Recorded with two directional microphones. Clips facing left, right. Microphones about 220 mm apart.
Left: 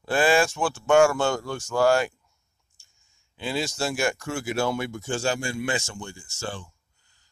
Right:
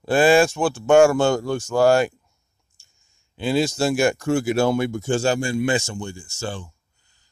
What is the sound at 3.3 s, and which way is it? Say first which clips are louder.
Speech: right 8 dB; 35° right (ahead or behind).